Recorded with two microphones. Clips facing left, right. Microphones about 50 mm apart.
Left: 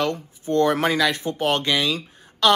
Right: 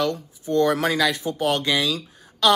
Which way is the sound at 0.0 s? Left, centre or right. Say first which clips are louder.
Even; left.